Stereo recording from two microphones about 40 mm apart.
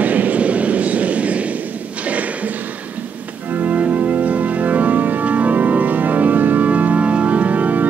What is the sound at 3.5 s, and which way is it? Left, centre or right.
Organ, right.